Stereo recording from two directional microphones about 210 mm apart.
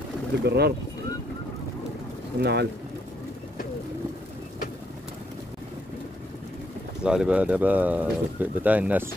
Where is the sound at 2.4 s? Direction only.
50° right (ahead or behind).